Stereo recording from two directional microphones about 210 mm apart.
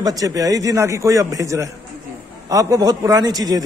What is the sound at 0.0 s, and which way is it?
A man's voice, 15° right (ahead or behind).